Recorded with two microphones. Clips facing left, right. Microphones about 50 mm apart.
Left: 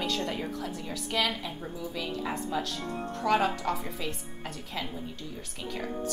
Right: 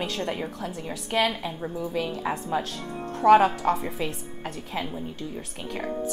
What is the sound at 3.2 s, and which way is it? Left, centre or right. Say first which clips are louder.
Speech: right 9 dB; right.